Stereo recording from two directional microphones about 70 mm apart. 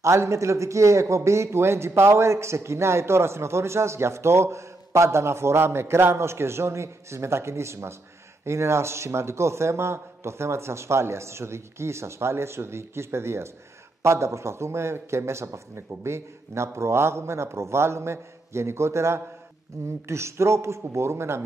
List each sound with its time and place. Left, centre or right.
0.0 s a man's voice: right